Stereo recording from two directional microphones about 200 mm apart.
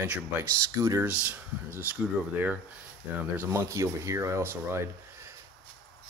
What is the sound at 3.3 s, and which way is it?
Speech, 15° right (ahead or behind).